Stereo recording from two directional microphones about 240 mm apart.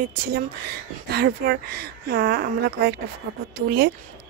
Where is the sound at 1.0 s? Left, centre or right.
Right.